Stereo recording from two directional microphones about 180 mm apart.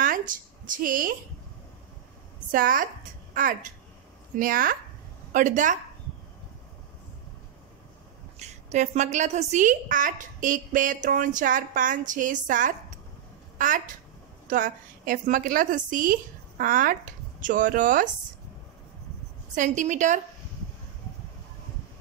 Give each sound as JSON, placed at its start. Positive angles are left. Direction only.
{"t": 0.3, "sound": "a woman's voice", "side_deg": -50}
{"t": 2.5, "sound": "a woman's voice", "side_deg": -50}
{"t": 4.4, "sound": "a woman's voice", "side_deg": -50}
{"t": 8.4, "sound": "a woman's voice", "side_deg": -40}
{"t": 19.5, "sound": "a woman's voice", "side_deg": -45}